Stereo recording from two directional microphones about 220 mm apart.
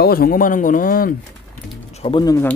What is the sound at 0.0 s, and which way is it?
A man's voice, 45° left (ahead or behind).